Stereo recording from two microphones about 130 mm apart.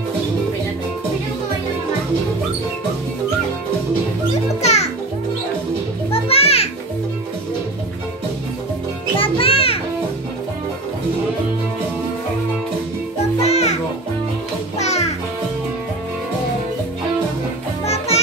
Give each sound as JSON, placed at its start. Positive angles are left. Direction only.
{"t": 4.6, "sound": "music", "side_deg": 55}
{"t": 6.1, "sound": "children playing", "side_deg": 50}
{"t": 9.2, "sound": "music", "side_deg": 45}
{"t": 13.4, "sound": "music", "side_deg": 55}
{"t": 14.8, "sound": "music", "side_deg": 55}
{"t": 17.8, "sound": "music", "side_deg": 55}